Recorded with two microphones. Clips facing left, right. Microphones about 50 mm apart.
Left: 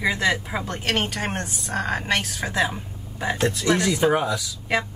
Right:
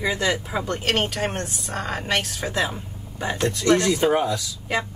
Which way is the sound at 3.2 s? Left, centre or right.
Centre.